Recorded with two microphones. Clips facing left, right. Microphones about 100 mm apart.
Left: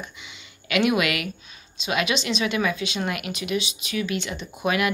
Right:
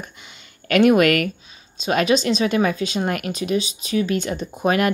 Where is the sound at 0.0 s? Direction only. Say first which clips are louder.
Right 1 dB; 45° right (ahead or behind).